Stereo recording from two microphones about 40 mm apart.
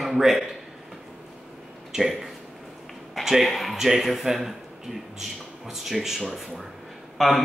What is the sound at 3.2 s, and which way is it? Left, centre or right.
Speech, centre.